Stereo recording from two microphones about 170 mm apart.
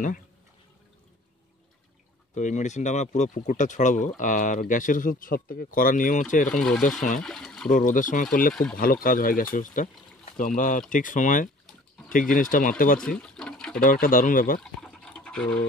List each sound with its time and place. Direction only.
2.3 s speech: 45° left (ahead or behind)
6.5 s speech: 5° left (ahead or behind)
7.7 s speech: 50° left (ahead or behind)
13.0 s water: 5° left (ahead or behind)
13.7 s speech: 55° left (ahead or behind)
14.6 s fill: 5° left (ahead or behind)